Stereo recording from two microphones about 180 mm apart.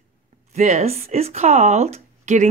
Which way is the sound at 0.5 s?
40° right (ahead or behind).